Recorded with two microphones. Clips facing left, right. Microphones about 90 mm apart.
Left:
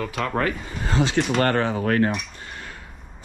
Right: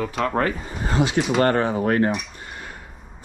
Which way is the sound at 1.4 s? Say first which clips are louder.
Right 4 dB; 40° right (ahead or behind).